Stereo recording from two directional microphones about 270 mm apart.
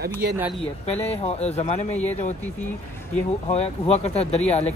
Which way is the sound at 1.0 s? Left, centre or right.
Left.